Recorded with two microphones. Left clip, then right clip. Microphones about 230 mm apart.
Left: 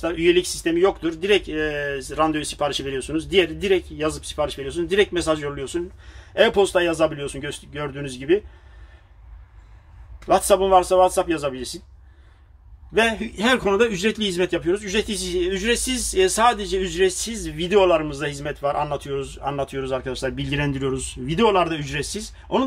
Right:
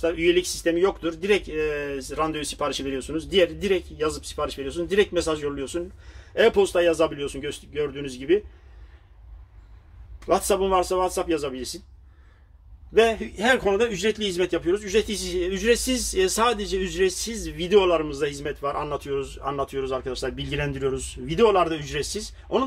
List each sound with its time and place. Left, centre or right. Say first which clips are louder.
0.0 s a man's voice: left 2 dB; centre
10.2 s a man's voice: left 5 dB; centre
12.9 s a man's voice: even; centre